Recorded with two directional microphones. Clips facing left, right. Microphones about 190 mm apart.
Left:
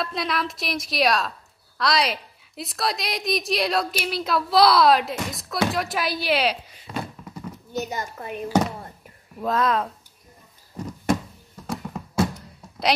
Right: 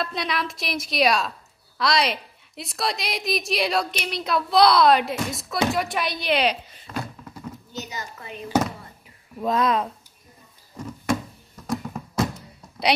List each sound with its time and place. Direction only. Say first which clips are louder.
0.0 s a woman's voice: left 1 dB; centre (ahead or behind)
7.8 s a woman's voice: left 4 dB; 50° left (ahead or behind)
9.4 s a woman's voice: right 1 dB; centre (ahead or behind)
11.6 s music: right 3 dB; 5° left (ahead or behind)